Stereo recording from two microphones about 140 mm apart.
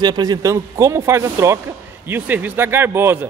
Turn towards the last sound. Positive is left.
turn(degrees=-15)  # may be behind; listen again after turning